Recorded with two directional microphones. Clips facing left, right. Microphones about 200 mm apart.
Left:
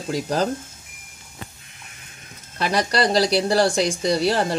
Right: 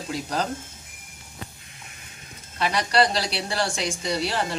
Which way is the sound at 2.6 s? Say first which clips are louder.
Left 1 dB; 40° left (ahead or behind).